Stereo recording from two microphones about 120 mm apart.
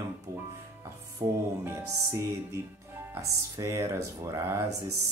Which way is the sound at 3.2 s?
25° right (ahead or behind).